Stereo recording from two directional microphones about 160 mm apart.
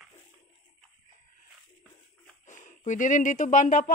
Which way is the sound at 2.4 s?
50° left (ahead or behind).